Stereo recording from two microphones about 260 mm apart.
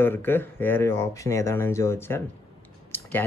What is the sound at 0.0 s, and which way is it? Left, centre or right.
Speech, centre.